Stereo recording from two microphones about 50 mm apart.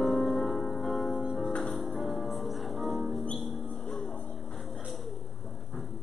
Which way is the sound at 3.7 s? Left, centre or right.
Centre.